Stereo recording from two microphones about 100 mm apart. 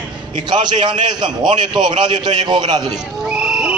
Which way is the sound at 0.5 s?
50° right (ahead or behind).